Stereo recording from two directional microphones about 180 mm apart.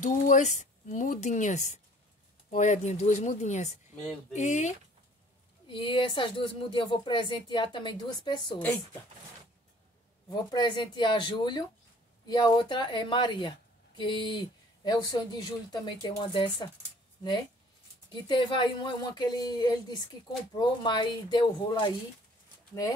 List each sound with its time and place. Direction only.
0.0 s speech: 45° left (ahead or behind)
5.7 s a woman's voice: 25° left (ahead or behind)
10.3 s a woman's voice: 25° left (ahead or behind)
18.1 s a woman's voice: 25° left (ahead or behind)